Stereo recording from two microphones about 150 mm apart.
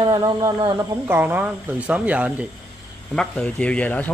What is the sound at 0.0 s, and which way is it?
Speech, 30° right (ahead or behind).